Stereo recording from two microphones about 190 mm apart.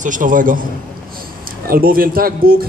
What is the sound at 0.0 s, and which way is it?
Speech, 45° right (ahead or behind).